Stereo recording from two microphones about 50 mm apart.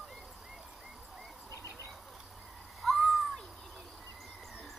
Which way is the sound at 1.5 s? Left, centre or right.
Left.